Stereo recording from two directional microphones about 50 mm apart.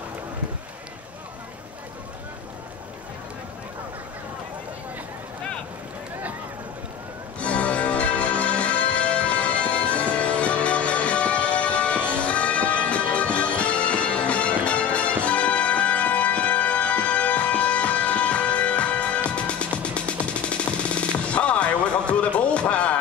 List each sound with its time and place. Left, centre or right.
7.3 s music: left